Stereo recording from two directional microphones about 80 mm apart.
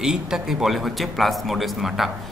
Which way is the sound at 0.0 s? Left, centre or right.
Centre.